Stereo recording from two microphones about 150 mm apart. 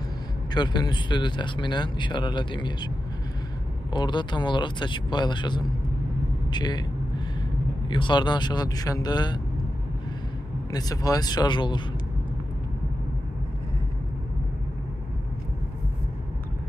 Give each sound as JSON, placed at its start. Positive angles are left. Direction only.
{"t": 0.6, "sound": "speech", "side_deg": 30}
{"t": 3.9, "sound": "speech", "side_deg": 30}
{"t": 7.9, "sound": "speech", "side_deg": 30}
{"t": 10.7, "sound": "speech", "side_deg": 25}